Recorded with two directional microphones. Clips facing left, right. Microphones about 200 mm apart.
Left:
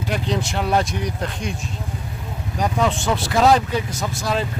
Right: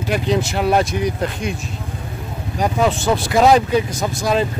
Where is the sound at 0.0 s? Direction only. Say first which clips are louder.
Right 5 dB; 5° right (ahead or behind).